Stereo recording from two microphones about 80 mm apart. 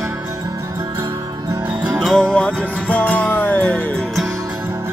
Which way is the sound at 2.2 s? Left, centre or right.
Centre.